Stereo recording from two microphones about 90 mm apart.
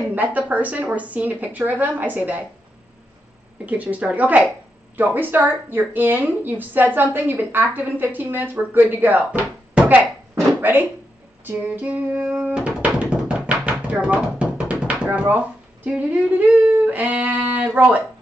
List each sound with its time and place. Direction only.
0.1 s speech: 15° right (ahead or behind)
3.6 s a woman's voice: 15° right (ahead or behind)
10.3 s a sound: 20° right (ahead or behind)
17.7 s speech: 15° right (ahead or behind)